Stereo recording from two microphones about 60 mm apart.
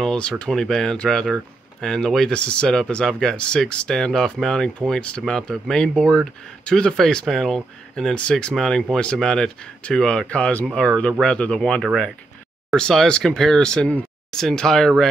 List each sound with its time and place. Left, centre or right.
0.0 s speech: centre
8.5 s speech: centre